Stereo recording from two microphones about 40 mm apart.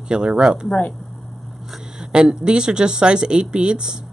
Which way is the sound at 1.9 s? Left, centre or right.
Centre.